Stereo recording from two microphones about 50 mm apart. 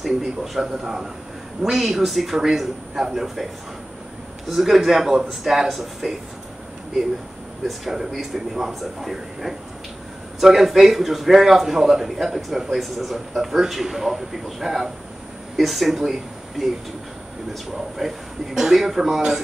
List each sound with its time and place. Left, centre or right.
0.0 s a man's voice: centre
4.5 s a man's voice: centre
7.6 s a man's voice: centre
17.7 s a man's voice: centre